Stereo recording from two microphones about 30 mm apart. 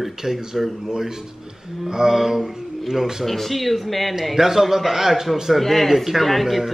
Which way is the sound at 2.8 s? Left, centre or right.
Centre.